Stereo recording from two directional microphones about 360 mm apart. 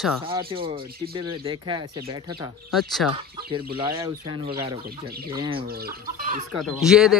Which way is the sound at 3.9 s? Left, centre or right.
Centre.